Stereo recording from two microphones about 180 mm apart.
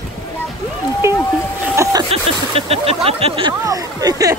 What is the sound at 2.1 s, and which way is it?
Speech, 35° right (ahead or behind).